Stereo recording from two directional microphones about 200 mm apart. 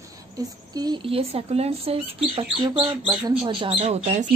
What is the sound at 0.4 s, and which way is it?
Speech, 20° right (ahead or behind).